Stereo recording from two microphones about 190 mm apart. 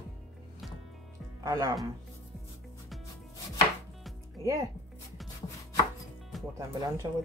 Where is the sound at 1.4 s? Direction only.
20° right (ahead or behind).